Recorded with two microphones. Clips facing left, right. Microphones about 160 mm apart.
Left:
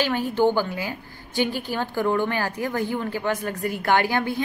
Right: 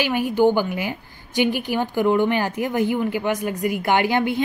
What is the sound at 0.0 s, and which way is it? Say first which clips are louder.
A woman's voice: right 3 dB; 15° right (ahead or behind).